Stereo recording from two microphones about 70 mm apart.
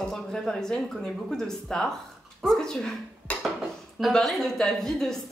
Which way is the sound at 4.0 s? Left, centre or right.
Centre.